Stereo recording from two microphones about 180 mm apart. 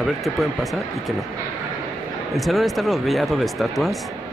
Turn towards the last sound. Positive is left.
turn(degrees=0)  # may be behind; listen again after turning